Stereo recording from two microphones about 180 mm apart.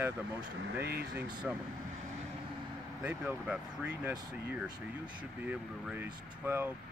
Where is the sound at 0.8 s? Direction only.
60° right (ahead or behind).